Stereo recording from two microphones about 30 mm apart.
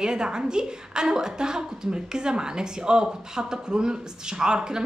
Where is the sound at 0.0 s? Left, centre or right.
Right.